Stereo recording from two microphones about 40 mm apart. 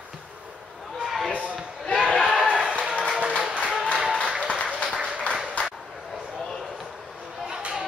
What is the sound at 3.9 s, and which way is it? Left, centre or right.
Applause, right.